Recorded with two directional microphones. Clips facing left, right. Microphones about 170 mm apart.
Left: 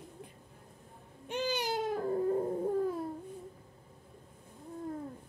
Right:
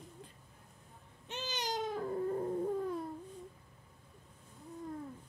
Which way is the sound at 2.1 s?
25° left (ahead or behind).